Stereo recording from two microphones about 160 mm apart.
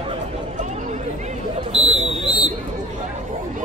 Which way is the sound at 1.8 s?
40° right (ahead or behind).